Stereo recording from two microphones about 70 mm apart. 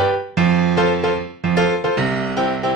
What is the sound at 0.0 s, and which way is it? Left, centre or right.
Music, centre.